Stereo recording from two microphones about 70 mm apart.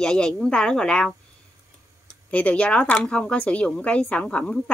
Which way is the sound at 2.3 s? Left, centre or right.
Left.